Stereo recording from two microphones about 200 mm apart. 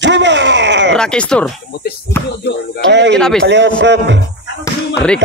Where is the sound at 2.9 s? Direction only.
60° right (ahead or behind).